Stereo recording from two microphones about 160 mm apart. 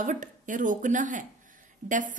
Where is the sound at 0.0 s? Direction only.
55° right (ahead or behind).